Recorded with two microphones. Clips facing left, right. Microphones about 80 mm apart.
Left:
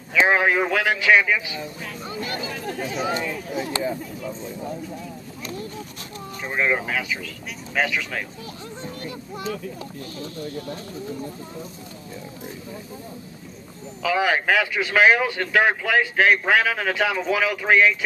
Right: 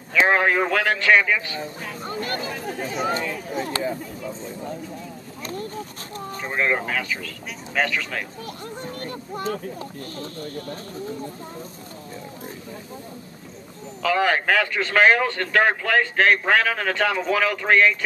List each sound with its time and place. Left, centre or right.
0.3 s speech: centre
2.0 s speech: right
2.5 s speech: centre
5.4 s a sound: right
6.4 s a sound: centre
6.9 s speech: centre
8.5 s speech: right
14.0 s speech: centre